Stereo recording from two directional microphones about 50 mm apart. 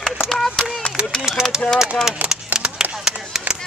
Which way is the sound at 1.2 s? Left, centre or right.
Centre.